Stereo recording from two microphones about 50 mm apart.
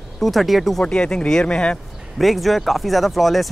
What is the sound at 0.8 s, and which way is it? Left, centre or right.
Speech, centre.